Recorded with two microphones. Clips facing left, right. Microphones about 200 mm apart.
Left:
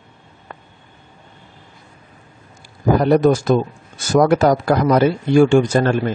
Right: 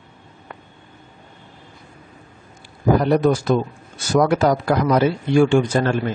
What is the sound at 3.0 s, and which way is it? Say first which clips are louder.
A man's voice: left 3 dB; 45° left (ahead or behind).